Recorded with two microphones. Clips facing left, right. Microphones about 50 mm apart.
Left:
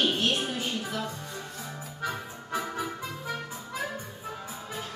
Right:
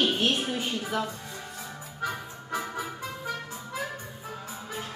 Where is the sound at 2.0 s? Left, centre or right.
Centre.